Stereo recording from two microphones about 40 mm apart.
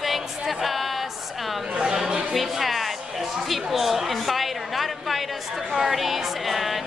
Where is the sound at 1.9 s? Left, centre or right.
Centre.